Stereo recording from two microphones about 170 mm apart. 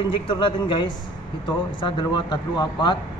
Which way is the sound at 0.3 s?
30° left (ahead or behind).